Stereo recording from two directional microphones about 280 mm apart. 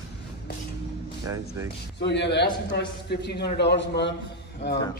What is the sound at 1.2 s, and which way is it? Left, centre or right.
Speech, centre.